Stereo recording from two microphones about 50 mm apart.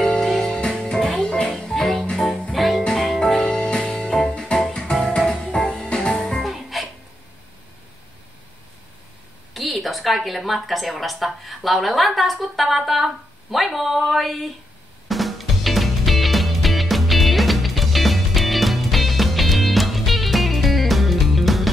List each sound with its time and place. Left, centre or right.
0.2 s music: centre
0.6 s music: centre
5.9 s music: centre
6.4 s music: centre
9.5 s a woman's voice: centre
15.0 s music: centre